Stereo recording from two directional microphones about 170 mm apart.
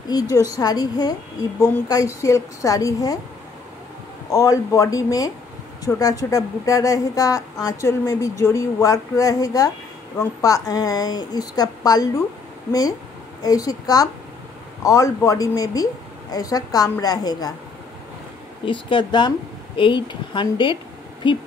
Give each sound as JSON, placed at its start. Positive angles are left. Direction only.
{"t": 0.1, "sound": "a woman's voice", "side_deg": 20}
{"t": 4.3, "sound": "a woman's voice", "side_deg": 20}
{"t": 13.4, "sound": "a woman's voice", "side_deg": 20}
{"t": 18.7, "sound": "a woman's voice", "side_deg": 30}